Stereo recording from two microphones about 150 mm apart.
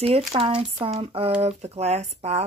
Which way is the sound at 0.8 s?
40° right (ahead or behind).